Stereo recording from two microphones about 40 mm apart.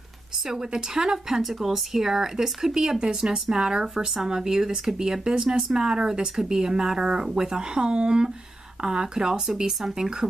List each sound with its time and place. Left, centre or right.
0.5 s speech: centre